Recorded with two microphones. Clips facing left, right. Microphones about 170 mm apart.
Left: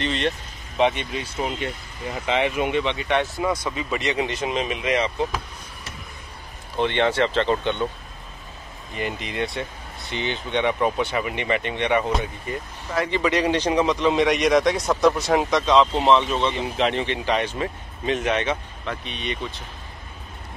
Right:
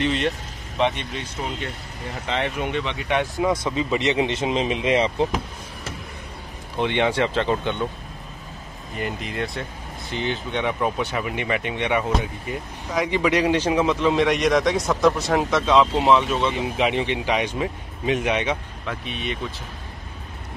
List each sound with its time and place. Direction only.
0.0 s a man's voice: 10° right (ahead or behind)
0.7 s speech: 5° left (ahead or behind); by 5.4 s 30° right (ahead or behind)
6.8 s a man's voice: 10° right (ahead or behind)
8.9 s a man's voice: centre (ahead or behind)